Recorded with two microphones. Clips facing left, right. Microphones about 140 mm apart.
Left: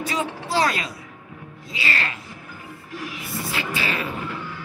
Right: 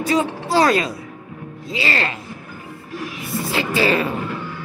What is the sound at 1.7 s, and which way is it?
Speech, 30° right (ahead or behind).